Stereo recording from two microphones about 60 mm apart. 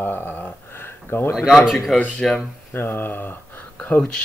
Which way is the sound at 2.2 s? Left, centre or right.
Centre.